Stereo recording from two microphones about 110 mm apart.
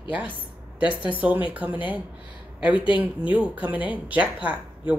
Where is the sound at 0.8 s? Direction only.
15° right (ahead or behind).